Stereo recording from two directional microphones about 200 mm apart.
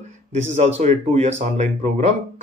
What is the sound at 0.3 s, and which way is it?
Speech, 35° right (ahead or behind).